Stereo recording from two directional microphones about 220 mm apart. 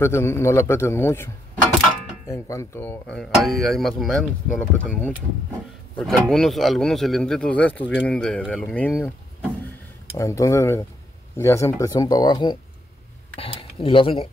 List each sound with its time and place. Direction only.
0.0 s a man's voice: 10° left (ahead or behind)
10.1 s a man's voice: 15° left (ahead or behind)